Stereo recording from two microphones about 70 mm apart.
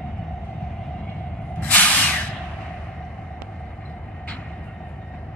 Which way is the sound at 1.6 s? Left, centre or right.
Left.